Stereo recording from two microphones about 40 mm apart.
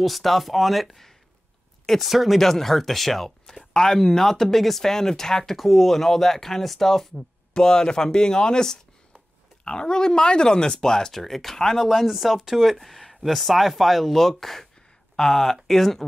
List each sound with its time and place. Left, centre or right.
0.0 s speech: centre
2.4 s speech: centre
7.5 s speech: centre